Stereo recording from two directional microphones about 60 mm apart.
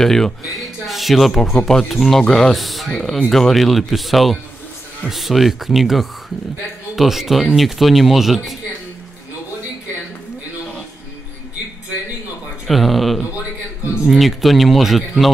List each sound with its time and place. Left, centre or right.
0.0 s speech: centre
12.6 s speech: centre